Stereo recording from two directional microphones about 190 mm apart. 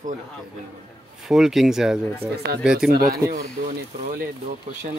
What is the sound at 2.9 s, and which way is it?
Speech, 50° right (ahead or behind).